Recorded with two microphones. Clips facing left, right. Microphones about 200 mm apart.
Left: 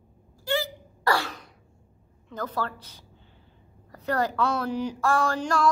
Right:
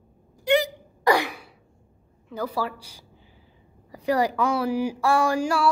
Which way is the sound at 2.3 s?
10° right (ahead or behind).